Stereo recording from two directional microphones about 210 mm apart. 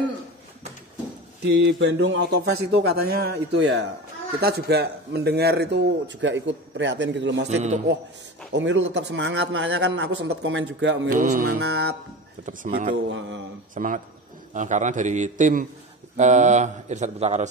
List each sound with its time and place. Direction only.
1.4 s speech: 55° right (ahead or behind)
7.4 s speech: 35° right (ahead or behind)
8.5 s a man's voice: 60° right (ahead or behind)
11.1 s speech: 40° right (ahead or behind)
11.6 s speech: 50° right (ahead or behind)
12.4 s speech: 40° right (ahead or behind)